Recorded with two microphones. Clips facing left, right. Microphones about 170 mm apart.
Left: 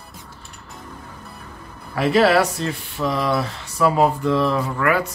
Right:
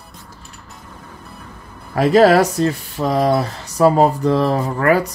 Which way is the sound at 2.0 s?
40° right (ahead or behind).